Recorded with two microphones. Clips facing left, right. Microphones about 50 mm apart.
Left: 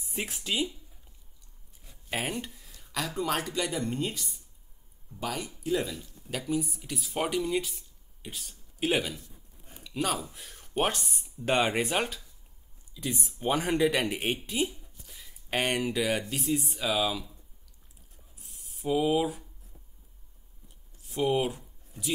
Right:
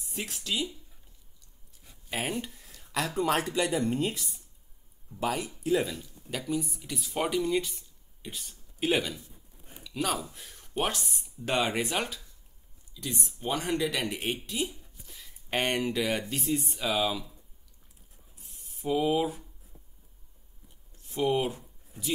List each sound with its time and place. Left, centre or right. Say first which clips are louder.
0.1 s speech: left 1 dB; centre
2.3 s a sound: right 1 dB; centre
3.2 s speech: right 3 dB; centre
5.2 s speech: right 3 dB; centre
11.5 s speech: left 2 dB; centre
14.4 s speech: left 3 dB; centre
18.4 s mechanisms: even; centre
21.0 s a sound: even; centre